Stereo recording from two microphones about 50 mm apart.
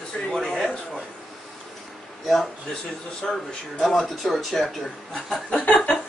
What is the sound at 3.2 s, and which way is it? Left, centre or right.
Speech, centre.